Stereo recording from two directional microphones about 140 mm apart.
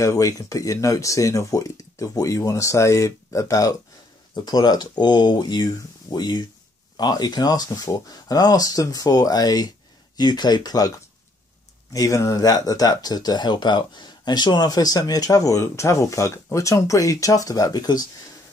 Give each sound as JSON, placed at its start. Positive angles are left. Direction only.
{"t": 0.0, "sound": "speech", "side_deg": 25}
{"t": 11.9, "sound": "speech", "side_deg": 25}